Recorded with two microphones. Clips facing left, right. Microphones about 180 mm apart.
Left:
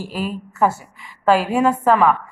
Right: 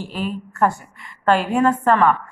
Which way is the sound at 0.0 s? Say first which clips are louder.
Left 1 dB; 5° left (ahead or behind).